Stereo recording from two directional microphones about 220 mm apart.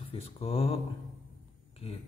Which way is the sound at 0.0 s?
25° left (ahead or behind).